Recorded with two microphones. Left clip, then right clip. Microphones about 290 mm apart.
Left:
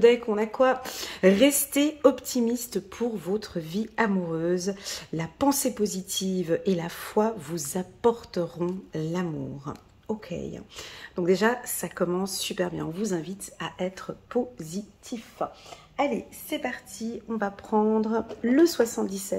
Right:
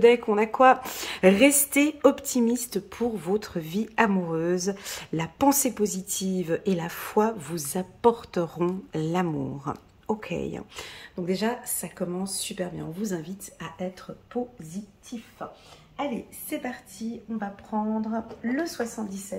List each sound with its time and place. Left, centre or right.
0.0 s speech: centre
11.1 s a woman's voice: centre
16.4 s a woman's voice: centre
17.6 s speech: left